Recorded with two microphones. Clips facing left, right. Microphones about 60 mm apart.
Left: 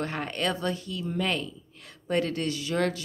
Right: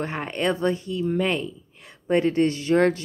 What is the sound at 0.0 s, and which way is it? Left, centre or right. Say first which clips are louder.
A woman's voice: right 4 dB; right.